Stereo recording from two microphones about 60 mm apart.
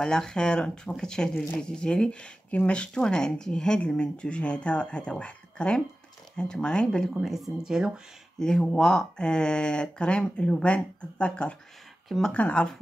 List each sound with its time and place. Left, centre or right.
0.0 s speech: centre
7.2 s speech: centre
8.4 s speech: centre